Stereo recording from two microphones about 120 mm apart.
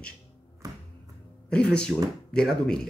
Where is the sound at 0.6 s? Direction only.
30° right (ahead or behind).